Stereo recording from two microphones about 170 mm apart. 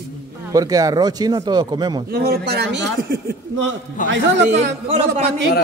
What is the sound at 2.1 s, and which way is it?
Speech, 65° right (ahead or behind).